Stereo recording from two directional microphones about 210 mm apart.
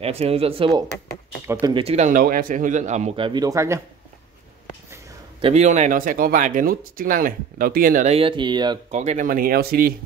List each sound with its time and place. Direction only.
0.0 s speech: 30° right (ahead or behind); by 3.8 s 15° right (ahead or behind)
5.4 s speech: 30° right (ahead or behind)
9.0 s speech: 35° right (ahead or behind)